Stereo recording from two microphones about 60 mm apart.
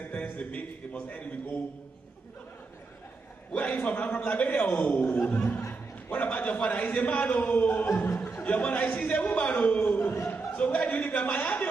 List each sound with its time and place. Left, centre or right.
0.0 s a man's voice: left
3.5 s a man's voice: left
9.9 s speech: left
10.2 s a man's voice: left